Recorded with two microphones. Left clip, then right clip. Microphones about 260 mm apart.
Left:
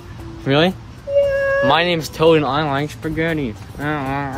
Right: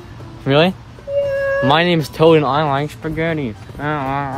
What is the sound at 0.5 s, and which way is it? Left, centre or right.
Speech, right.